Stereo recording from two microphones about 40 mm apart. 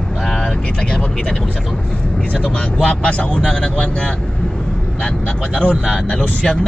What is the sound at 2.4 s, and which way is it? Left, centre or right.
Speech, left.